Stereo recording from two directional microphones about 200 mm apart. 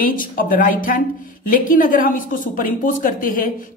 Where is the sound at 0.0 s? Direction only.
45° left (ahead or behind).